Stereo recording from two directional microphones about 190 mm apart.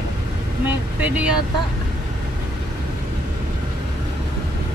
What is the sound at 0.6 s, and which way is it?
Vehicle, 10° right (ahead or behind).